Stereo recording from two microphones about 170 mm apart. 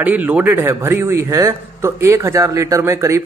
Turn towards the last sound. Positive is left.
turn(degrees=-20)  # may be behind; listen again after turning